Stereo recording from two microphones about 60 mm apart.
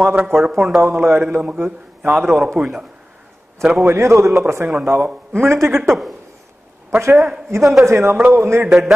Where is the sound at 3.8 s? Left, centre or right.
Right.